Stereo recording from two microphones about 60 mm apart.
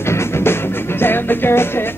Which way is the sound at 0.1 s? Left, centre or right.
Left.